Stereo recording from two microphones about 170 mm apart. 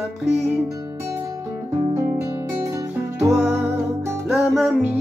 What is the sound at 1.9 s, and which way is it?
Guitar, 15° right (ahead or behind).